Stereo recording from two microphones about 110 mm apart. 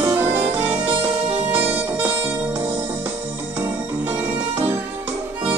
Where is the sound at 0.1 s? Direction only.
20° right (ahead or behind).